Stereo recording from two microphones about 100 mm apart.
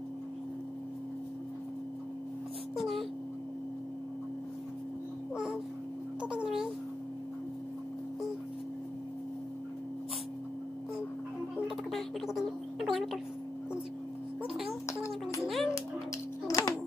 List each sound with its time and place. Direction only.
2.8 s a sound: centre (ahead or behind)
6.2 s babbling: 10° right (ahead or behind)
11.7 s music: 5° right (ahead or behind)
15.4 s music: centre (ahead or behind)
16.4 s babbling: 35° left (ahead or behind)